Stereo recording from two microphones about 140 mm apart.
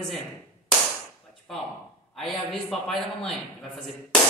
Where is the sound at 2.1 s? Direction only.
Centre (ahead or behind).